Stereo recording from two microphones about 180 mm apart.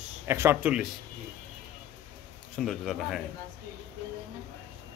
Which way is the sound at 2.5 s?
Centre (ahead or behind).